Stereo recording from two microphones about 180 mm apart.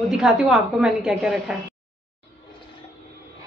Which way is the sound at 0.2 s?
Centre (ahead or behind).